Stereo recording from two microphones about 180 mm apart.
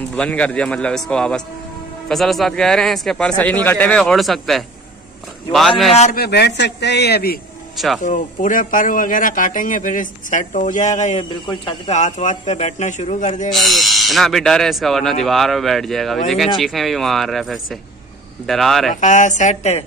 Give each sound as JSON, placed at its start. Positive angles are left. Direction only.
{"t": 0.1, "sound": "speech", "side_deg": 5}
{"t": 6.1, "sound": "speech", "side_deg": 65}
{"t": 7.7, "sound": "speech", "side_deg": 0}
{"t": 8.0, "sound": "speech", "side_deg": 45}
{"t": 11.2, "sound": "speech", "side_deg": 25}
{"t": 11.9, "sound": "a man's voice", "side_deg": 40}
{"t": 13.5, "sound": "speech", "side_deg": 0}
{"t": 18.9, "sound": "a man's voice", "side_deg": 45}